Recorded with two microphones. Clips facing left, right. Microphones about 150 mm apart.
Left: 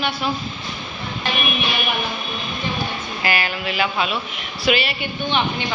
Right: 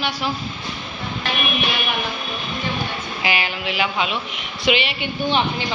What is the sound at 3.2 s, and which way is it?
A woman's voice, 15° right (ahead or behind).